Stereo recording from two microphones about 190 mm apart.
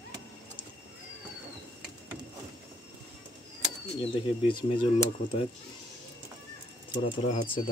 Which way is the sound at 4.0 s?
25° left (ahead or behind).